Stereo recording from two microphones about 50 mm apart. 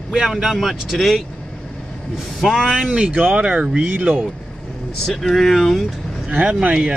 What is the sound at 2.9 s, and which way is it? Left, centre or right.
Speech, right.